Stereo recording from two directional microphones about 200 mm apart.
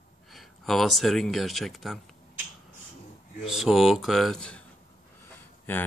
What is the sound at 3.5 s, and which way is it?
Speech, centre (ahead or behind).